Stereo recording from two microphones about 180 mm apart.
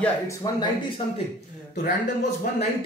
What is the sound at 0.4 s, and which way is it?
Speech, 30° left (ahead or behind).